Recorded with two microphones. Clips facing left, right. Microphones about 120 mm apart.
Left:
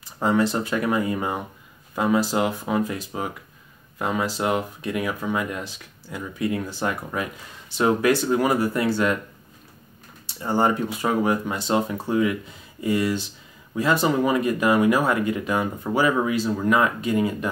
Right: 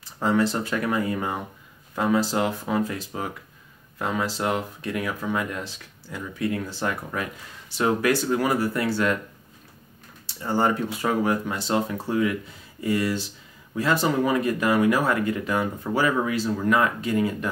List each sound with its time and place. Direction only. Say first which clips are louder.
0.0 s speech: left 1 dB; 15° left (ahead or behind)
10.2 s speech: left 2 dB; 20° left (ahead or behind)